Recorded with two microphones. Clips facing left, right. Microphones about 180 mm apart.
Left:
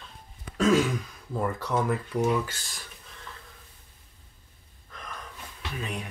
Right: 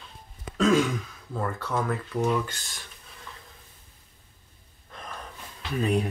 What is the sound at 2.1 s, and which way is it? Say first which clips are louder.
Speech: right 1 dB; 5° left (ahead or behind).